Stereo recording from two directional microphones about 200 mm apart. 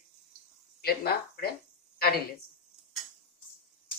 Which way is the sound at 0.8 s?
50° left (ahead or behind).